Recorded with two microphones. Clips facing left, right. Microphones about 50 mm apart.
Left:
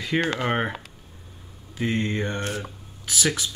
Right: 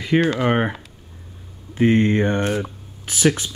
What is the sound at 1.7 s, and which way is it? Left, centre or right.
Speech, right.